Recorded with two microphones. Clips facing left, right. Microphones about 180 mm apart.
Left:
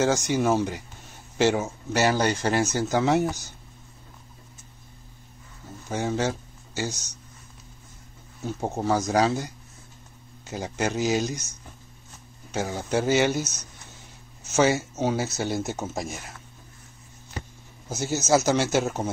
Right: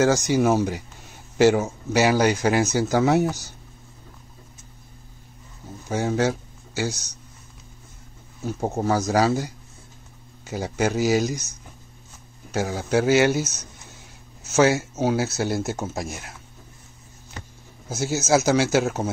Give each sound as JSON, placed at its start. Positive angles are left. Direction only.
{"t": 0.3, "sound": "speech", "side_deg": -5}
{"t": 5.9, "sound": "speech", "side_deg": -5}
{"t": 8.5, "sound": "speech", "side_deg": 0}
{"t": 12.4, "sound": "speech", "side_deg": -5}
{"t": 17.4, "sound": "a sound", "side_deg": 15}
{"t": 17.8, "sound": "speech", "side_deg": -10}